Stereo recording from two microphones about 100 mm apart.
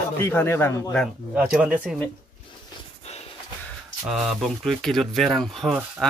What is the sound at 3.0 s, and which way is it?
Snort, 90° left.